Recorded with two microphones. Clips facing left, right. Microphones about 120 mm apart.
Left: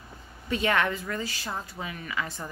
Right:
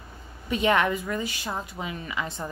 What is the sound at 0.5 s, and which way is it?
A woman's voice, 20° right (ahead or behind).